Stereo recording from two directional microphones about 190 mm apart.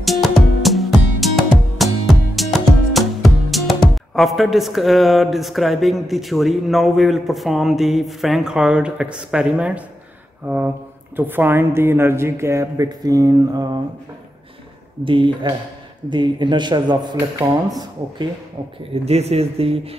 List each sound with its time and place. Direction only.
0.0 s music: centre (ahead or behind)
10.4 s a woman's voice: 10° right (ahead or behind)
15.0 s a man's voice: 25° right (ahead or behind)
19.0 s speech: 35° right (ahead or behind)